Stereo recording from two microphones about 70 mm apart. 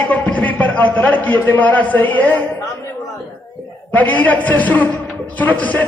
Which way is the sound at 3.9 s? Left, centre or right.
Left.